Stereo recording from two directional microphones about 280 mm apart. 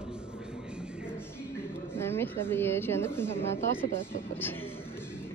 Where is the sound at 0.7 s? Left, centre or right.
Centre.